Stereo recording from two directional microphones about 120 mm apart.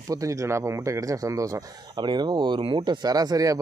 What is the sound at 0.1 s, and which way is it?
Speech, 25° right (ahead or behind).